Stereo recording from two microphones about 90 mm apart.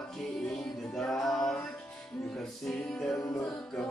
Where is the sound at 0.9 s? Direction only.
5° left (ahead or behind).